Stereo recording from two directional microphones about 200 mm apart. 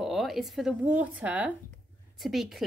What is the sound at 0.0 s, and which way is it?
A woman's voice, centre (ahead or behind).